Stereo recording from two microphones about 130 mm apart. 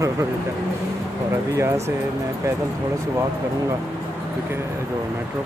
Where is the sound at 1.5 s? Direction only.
20° right (ahead or behind).